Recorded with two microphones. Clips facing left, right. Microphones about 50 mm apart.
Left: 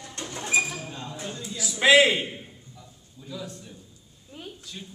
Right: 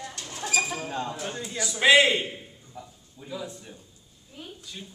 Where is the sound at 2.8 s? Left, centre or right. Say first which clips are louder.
Right 11 dB; right.